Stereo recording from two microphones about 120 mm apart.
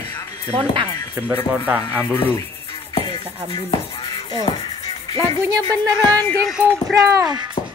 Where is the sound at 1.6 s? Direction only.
10° right (ahead or behind).